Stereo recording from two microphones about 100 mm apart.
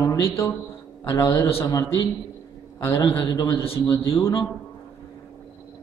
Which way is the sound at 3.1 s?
40° left (ahead or behind).